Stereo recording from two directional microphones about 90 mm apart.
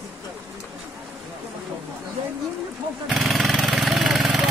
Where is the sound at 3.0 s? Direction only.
Centre (ahead or behind).